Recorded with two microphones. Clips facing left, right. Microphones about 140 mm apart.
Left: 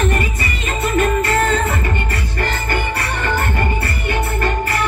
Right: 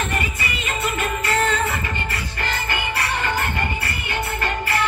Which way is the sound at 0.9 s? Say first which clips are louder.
Left 8 dB; 50° left (ahead or behind).